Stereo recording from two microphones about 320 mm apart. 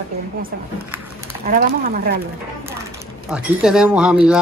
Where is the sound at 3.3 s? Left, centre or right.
Centre.